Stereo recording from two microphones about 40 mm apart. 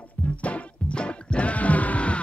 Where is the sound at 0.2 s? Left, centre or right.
Left.